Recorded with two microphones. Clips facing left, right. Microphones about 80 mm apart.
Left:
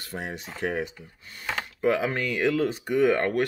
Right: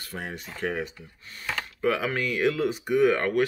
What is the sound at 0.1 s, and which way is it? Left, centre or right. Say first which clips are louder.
Speech: left 1 dB; left.